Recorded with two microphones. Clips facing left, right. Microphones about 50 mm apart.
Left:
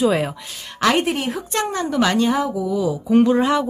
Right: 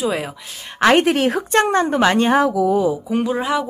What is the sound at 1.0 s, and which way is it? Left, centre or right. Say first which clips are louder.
Speech: right 5 dB; right.